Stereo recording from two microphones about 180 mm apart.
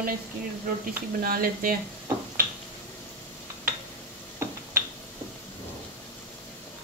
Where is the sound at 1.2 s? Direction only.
50° right (ahead or behind).